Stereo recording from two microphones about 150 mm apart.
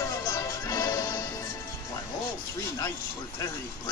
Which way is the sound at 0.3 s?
20° left (ahead or behind).